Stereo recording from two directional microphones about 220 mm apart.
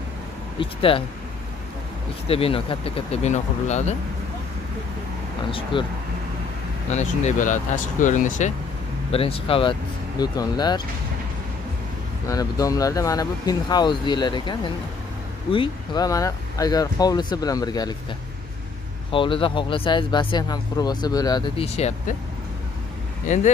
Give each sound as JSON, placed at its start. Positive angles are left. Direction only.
{"t": 0.6, "sound": "speech", "side_deg": 25}
{"t": 2.2, "sound": "speech", "side_deg": 25}
{"t": 5.5, "sound": "speech", "side_deg": 25}
{"t": 6.9, "sound": "speech", "side_deg": 30}
{"t": 12.3, "sound": "speech", "side_deg": 15}
{"t": 19.1, "sound": "speech", "side_deg": 25}
{"t": 23.2, "sound": "speech", "side_deg": 35}